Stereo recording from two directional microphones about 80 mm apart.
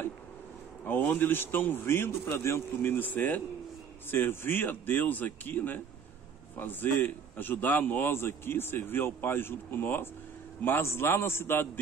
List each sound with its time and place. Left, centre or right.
0.8 s a man's voice: left
2.9 s a man's voice: left